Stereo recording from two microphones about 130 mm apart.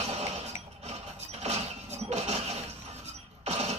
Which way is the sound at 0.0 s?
55° right (ahead or behind).